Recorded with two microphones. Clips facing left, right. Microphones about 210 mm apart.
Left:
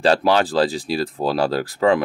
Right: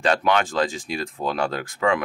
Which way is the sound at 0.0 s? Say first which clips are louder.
Left 4 dB; 35° left (ahead or behind).